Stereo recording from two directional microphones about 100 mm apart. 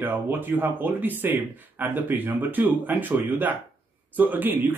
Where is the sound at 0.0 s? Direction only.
20° right (ahead or behind).